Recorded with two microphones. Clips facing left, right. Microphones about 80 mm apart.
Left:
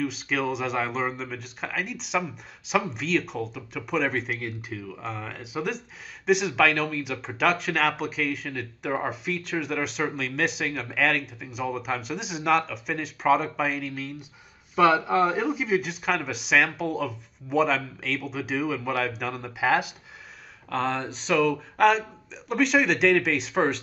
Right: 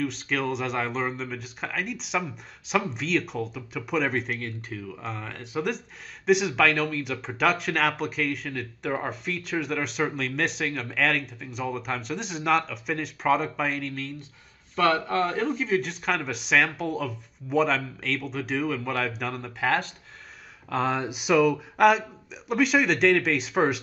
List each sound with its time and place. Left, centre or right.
0.0 s speech: centre
20.7 s speech: centre